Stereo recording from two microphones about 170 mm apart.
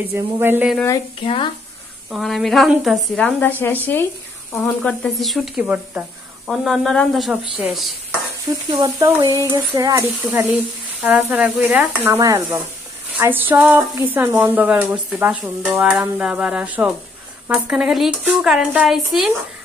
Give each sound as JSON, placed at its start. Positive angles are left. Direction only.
{"t": 0.1, "sound": "speech", "side_deg": -10}
{"t": 1.2, "sound": "speech", "side_deg": 35}
{"t": 2.0, "sound": "speech", "side_deg": 0}
{"t": 8.5, "sound": "speech", "side_deg": -25}
{"t": 11.0, "sound": "speech", "side_deg": -10}